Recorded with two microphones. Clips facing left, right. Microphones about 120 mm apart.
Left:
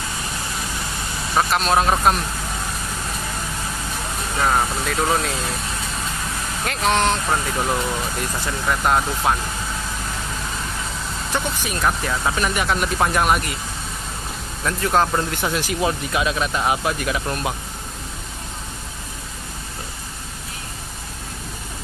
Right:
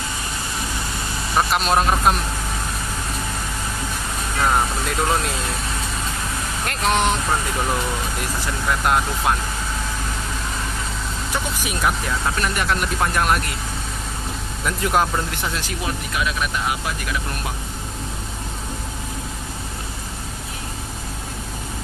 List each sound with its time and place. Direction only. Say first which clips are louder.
1.3 s speech: even; centre (ahead or behind)
4.4 s speech: even; centre (ahead or behind)
6.6 s speech: left 1 dB; centre (ahead or behind)
8.6 s speech: left 1 dB; centre (ahead or behind)
12.4 s speech: left 1 dB; 5° left (ahead or behind)
14.6 s speech: left 1 dB; 10° right (ahead or behind)
15.4 s speech: left 5 dB; 25° left (ahead or behind)